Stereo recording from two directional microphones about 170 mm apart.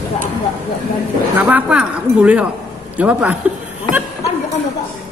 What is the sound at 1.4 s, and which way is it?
Speech, 10° right (ahead or behind).